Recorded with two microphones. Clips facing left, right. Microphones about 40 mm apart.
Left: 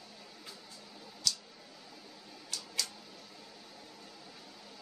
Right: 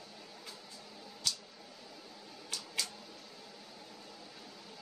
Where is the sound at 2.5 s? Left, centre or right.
Right.